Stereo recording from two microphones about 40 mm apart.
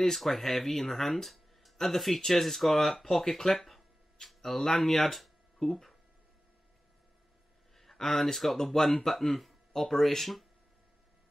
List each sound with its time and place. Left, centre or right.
0.0 s speech: centre
7.7 s a sound: centre
8.0 s speech: centre